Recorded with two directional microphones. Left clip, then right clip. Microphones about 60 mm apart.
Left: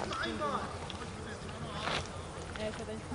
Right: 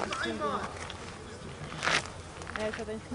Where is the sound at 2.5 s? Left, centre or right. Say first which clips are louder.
Right 6 dB; right.